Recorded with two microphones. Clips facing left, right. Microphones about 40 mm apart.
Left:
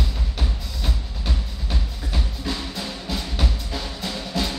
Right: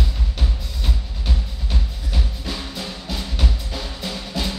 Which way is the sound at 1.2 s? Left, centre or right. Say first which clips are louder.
Even; centre.